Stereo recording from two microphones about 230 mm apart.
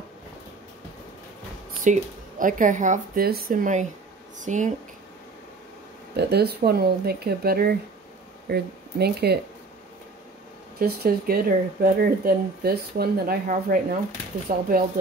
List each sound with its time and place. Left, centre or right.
1.9 s speech: right
6.1 s speech: right
10.8 s speech: right